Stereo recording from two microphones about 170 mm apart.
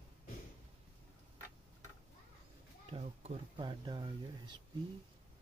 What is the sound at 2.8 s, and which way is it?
Speech, 35° right (ahead or behind).